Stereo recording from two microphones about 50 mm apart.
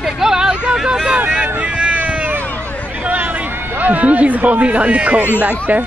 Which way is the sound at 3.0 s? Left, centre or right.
Right.